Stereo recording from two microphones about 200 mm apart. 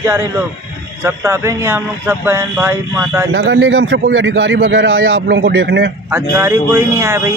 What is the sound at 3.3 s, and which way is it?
A man's voice, 60° right (ahead or behind).